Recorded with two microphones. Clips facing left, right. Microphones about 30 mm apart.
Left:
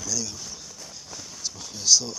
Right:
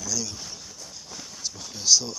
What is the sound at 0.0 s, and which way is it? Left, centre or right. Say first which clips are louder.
Speech: even; centre.